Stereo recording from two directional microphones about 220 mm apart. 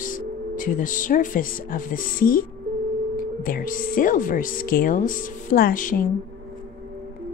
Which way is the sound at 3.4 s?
40° left (ahead or behind).